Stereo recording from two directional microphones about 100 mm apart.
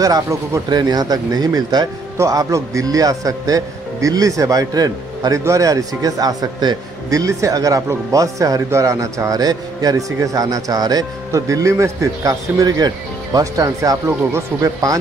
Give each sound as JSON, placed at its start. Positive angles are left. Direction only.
{"t": 0.0, "sound": "a man's voice", "side_deg": -35}
{"t": 2.1, "sound": "a man's voice", "side_deg": -35}